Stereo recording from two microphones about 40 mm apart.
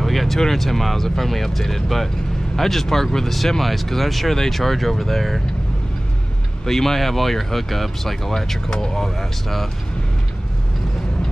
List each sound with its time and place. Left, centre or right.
0.0 s speech: centre
6.6 s speech: centre